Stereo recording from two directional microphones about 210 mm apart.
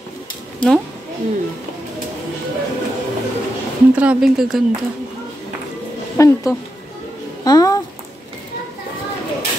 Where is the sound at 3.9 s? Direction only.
5° right (ahead or behind).